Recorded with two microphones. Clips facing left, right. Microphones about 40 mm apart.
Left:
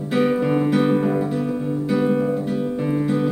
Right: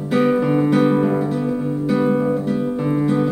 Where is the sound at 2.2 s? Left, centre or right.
Right.